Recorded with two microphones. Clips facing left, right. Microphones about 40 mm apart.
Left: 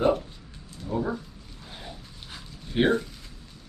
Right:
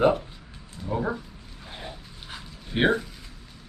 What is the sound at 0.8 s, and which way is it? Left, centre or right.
Speech, right.